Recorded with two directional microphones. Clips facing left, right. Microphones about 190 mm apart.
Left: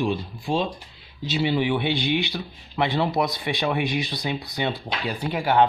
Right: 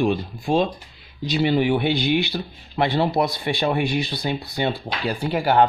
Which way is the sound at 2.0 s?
5° right (ahead or behind).